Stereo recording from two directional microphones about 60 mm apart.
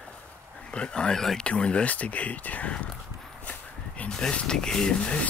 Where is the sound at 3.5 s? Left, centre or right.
Left.